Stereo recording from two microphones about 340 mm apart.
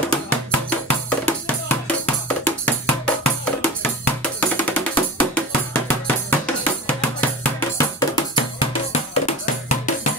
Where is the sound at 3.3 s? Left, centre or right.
Centre.